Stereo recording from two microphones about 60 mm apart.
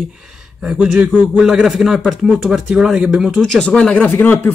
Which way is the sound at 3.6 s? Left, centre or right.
Centre.